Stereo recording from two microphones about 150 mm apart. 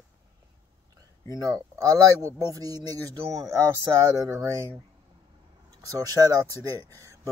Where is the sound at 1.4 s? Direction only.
25° right (ahead or behind).